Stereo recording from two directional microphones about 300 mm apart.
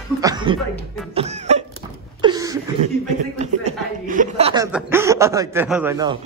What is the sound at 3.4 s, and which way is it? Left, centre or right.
Chuckle, right.